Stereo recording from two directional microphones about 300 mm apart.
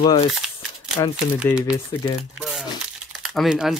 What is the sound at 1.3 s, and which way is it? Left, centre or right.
Speech, centre.